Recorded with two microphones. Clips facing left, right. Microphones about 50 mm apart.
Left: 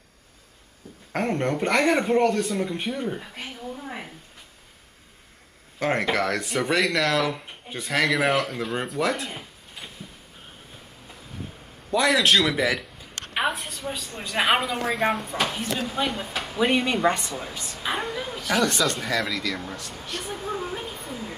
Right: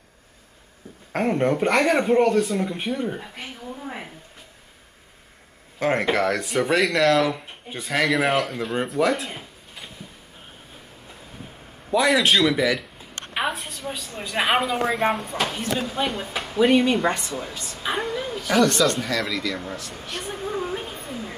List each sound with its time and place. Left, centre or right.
1.1 s speech: centre
5.8 s speech: centre
11.9 s speech: centre
13.3 s a sound: centre
14.1 s speech: centre
17.1 s a woman's voice: left
17.7 s speech: centre
20.2 s a sound: centre